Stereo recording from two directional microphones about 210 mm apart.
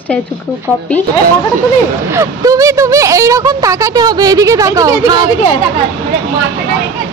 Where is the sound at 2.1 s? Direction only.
15° right (ahead or behind).